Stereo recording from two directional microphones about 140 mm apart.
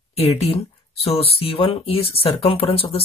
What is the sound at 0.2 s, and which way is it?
Speech, 45° left (ahead or behind).